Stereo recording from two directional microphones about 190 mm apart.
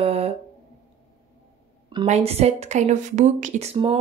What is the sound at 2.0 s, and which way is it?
Speech, 35° right (ahead or behind).